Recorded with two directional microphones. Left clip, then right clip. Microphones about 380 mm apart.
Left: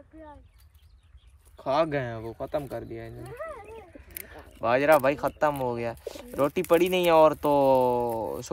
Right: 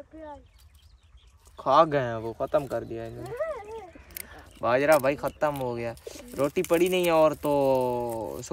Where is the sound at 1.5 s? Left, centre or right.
Centre.